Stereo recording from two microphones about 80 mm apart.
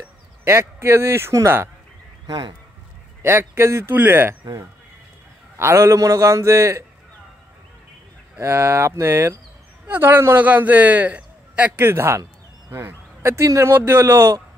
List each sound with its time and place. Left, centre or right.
0.5 s speech: right
2.2 s speech: right
3.2 s speech: right
5.6 s speech: right
8.4 s a man's voice: right; by 11.8 s centre
11.8 s speech: right